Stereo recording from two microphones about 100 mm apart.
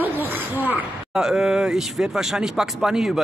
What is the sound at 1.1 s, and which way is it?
Speech, 5° right (ahead or behind).